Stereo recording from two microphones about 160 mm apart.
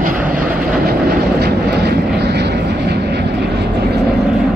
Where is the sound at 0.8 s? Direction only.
80° right.